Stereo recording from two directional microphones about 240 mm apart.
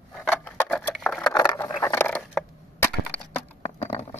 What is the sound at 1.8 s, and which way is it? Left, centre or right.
Crushing, centre.